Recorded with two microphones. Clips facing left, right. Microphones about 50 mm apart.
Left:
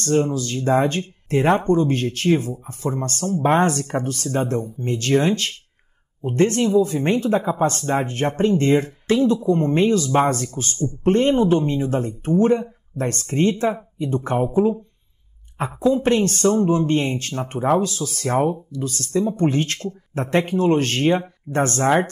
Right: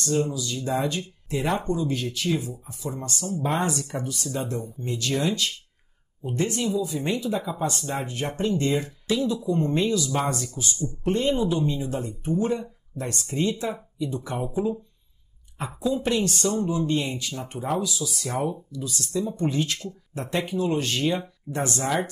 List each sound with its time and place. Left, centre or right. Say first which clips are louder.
0.0 s speech: left 6 dB; left